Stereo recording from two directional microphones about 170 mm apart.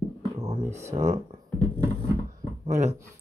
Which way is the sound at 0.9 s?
40° right (ahead or behind).